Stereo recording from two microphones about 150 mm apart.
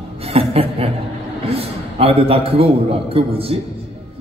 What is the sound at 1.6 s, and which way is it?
A man's voice, 40° right (ahead or behind).